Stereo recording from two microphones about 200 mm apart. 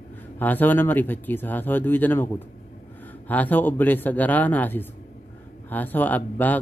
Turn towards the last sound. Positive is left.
turn(degrees=10)  # may be behind; listen again after turning